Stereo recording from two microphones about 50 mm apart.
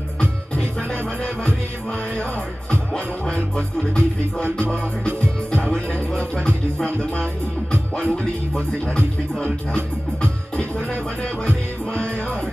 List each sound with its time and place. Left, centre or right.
0.2 s music: centre
2.7 s music: centre
3.7 s speech: centre
5.5 s music: centre
8.2 s speech: centre
10.5 s music: left